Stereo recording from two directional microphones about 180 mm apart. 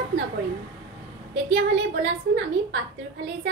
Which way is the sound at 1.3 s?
75° right (ahead or behind).